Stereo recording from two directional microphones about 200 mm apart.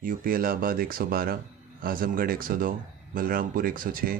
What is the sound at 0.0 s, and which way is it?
A man's voice, 45° right (ahead or behind).